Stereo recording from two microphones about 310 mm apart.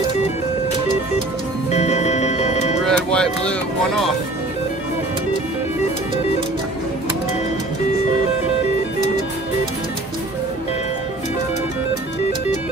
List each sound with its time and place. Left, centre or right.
1.7 s music: left
2.8 s music: centre